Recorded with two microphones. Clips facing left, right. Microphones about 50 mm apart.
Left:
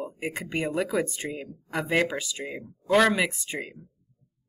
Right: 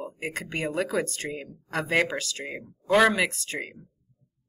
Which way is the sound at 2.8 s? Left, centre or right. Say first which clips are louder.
Right 1 dB; centre.